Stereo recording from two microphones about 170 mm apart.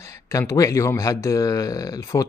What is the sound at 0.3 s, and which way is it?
Speech, 20° left (ahead or behind).